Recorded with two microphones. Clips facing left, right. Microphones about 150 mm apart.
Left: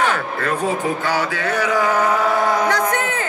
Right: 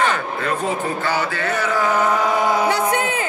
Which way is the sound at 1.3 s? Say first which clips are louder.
Left 2 dB; 10° left (ahead or behind).